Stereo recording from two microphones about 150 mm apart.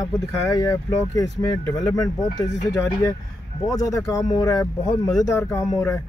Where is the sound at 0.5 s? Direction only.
20° left (ahead or behind).